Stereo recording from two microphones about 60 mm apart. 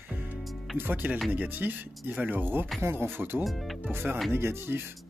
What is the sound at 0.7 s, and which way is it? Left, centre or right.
Speech, right.